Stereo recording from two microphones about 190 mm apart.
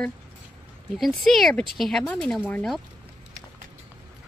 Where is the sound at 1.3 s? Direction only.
Centre (ahead or behind).